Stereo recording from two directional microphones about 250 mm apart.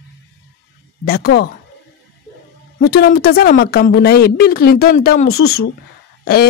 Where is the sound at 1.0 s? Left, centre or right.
Left.